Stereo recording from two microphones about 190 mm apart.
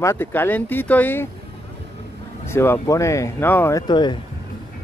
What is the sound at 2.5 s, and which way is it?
Speech, 15° left (ahead or behind).